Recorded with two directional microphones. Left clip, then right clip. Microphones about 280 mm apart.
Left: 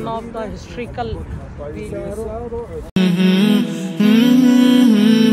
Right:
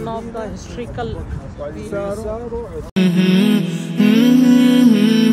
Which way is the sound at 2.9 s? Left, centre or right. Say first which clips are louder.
Even; centre.